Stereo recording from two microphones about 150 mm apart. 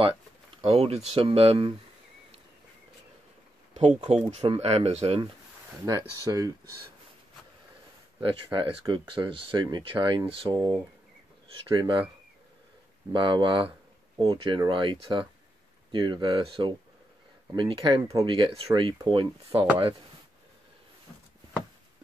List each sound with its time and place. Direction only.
0.6 s speech: 40° right (ahead or behind)
3.7 s speech: 45° right (ahead or behind)
5.9 s speech: 25° right (ahead or behind)
8.2 s speech: 35° right (ahead or behind)
13.1 s speech: 35° right (ahead or behind)